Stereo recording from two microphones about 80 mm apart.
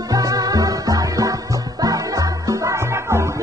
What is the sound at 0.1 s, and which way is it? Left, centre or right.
Music, right.